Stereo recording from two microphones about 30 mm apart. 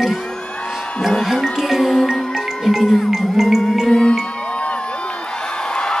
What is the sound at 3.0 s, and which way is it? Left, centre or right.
Music, centre.